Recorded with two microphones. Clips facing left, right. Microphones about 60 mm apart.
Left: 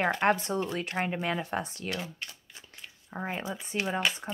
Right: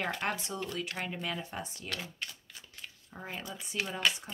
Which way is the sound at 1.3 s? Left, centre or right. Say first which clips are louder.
Left 7 dB; left.